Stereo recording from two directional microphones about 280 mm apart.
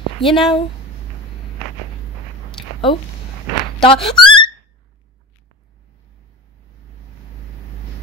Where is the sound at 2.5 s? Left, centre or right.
Centre.